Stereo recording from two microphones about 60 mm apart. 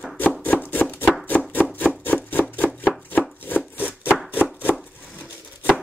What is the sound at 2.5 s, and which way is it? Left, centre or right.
Chopping, left.